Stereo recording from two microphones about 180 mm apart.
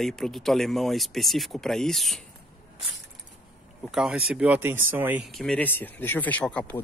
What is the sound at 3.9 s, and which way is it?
Speech, 5° right (ahead or behind).